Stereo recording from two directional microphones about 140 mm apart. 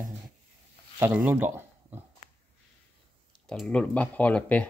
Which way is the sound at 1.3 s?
15° right (ahead or behind).